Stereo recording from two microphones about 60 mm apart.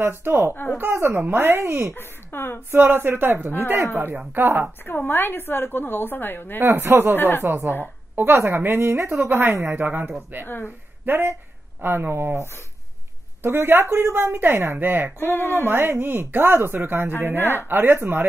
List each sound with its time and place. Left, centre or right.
0.0 s speech: right
2.0 s speech: left
2.7 s speech: right
4.8 s a woman's voice: left
6.6 s speech: right
7.2 s a woman's voice: left
8.2 s speech: right
9.7 s speech: right
10.4 s a woman's voice: left
11.1 s speech: right
15.3 s a woman's voice: left
15.6 s speech: right
17.4 s a woman's voice: left
17.6 s speech: right